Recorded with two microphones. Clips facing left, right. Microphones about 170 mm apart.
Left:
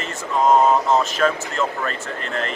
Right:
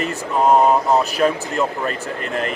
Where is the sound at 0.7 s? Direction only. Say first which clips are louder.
Right 1 dB; 15° right (ahead or behind).